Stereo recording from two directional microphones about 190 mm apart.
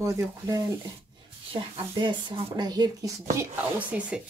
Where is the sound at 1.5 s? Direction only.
25° right (ahead or behind).